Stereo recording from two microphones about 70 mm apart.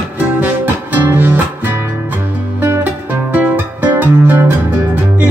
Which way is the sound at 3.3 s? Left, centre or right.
Right.